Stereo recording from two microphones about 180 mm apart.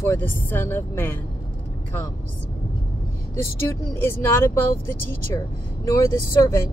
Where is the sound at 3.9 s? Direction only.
10° left (ahead or behind).